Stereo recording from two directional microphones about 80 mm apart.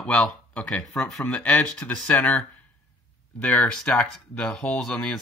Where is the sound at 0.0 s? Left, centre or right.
Centre.